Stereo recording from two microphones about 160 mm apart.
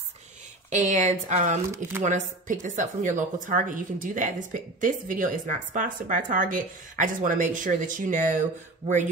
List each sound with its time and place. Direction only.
0.7 s speech: 50° right (ahead or behind)
1.7 s speech: 15° right (ahead or behind)
2.0 s speech: 50° right (ahead or behind)